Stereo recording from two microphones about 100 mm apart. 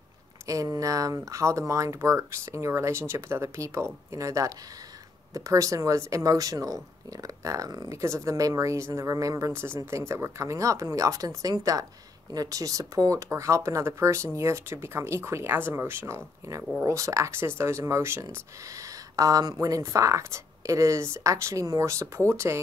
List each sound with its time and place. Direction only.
0.5 s speech: 35° right (ahead or behind)